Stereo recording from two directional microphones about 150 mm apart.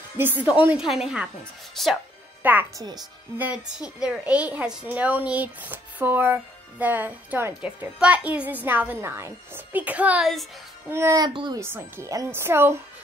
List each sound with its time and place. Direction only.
0.2 s a woman's voice: 10° right (ahead or behind)
2.4 s a woman's voice: 10° right (ahead or behind)
10.9 s a woman's voice: 15° right (ahead or behind)
11.2 s speech: 30° right (ahead or behind)
11.6 s a woman's voice: 15° right (ahead or behind)